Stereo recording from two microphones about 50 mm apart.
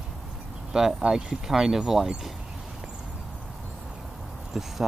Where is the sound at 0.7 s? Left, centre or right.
Centre.